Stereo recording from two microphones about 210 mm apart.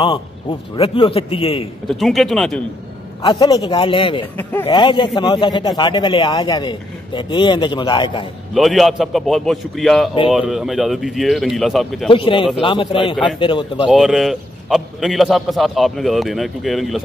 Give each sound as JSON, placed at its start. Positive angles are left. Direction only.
{"t": 0.0, "sound": "a man's voice", "side_deg": 25}
{"t": 1.9, "sound": "a man's voice", "side_deg": 0}
{"t": 3.2, "sound": "a man's voice", "side_deg": 15}
{"t": 4.4, "sound": "speech", "side_deg": 10}
{"t": 4.6, "sound": "a man's voice", "side_deg": 25}
{"t": 8.5, "sound": "a man's voice", "side_deg": 0}
{"t": 12.1, "sound": "a man's voice", "side_deg": 25}
{"t": 13.8, "sound": "a man's voice", "side_deg": 0}